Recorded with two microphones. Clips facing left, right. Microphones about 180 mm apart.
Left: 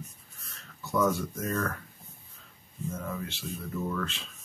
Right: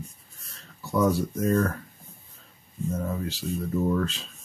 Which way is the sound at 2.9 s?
35° right (ahead or behind).